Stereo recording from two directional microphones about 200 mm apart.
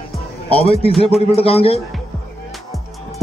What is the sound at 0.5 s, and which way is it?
A man's voice, 30° left (ahead or behind).